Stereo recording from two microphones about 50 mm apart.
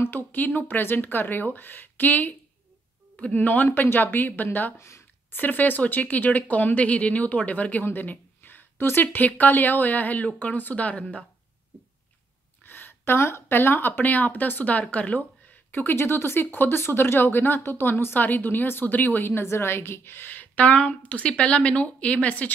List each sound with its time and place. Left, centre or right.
0.0 s speech: left
3.3 s speech: left
4.7 s speech: left
5.3 s speech: left
12.6 s a woman's voice: left
19.4 s speech: left